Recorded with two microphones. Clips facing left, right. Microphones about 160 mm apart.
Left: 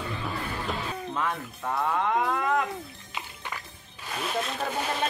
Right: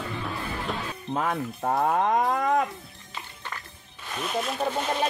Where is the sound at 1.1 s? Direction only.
45° right (ahead or behind).